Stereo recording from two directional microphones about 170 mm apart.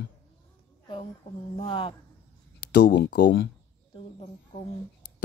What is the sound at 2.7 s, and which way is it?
Speech, 85° left.